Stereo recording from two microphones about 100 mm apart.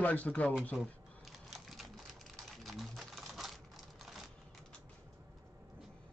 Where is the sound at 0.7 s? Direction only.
Centre (ahead or behind).